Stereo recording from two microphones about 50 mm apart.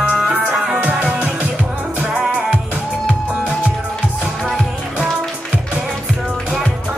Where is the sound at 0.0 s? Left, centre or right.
Right.